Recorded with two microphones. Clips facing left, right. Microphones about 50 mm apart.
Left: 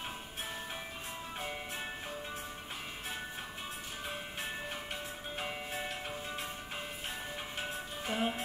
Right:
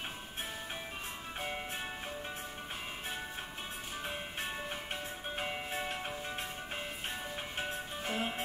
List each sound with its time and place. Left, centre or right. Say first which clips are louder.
5.4 s music: right 1 dB; centre
8.0 s music: left 3 dB; centre